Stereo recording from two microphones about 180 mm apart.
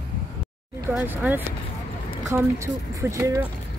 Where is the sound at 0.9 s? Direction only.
10° right (ahead or behind).